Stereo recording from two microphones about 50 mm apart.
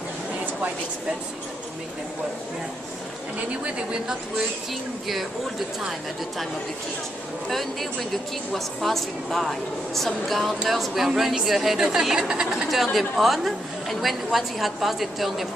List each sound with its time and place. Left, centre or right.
3.3 s a woman's voice: centre
7.4 s a woman's voice: centre
12.6 s a woman's voice: centre